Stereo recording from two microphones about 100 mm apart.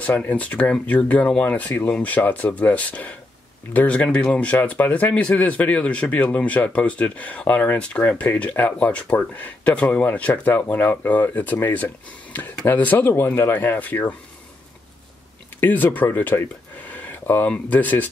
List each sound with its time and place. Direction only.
0.3 s speech: 15° left (ahead or behind)
15.6 s speech: 20° left (ahead or behind)